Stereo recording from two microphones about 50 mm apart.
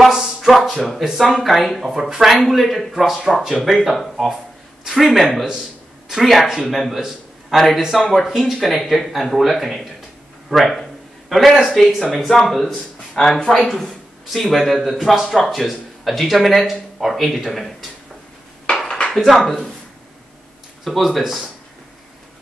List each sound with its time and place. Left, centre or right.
0.4 s speech: centre
7.0 s a sound: centre
7.8 s speech: centre
18.7 s dishes: centre
19.1 s speech: centre
20.8 s speech: centre